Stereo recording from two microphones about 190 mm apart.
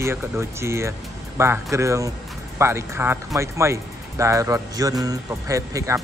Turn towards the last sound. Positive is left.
turn(degrees=-15)  # may be behind; listen again after turning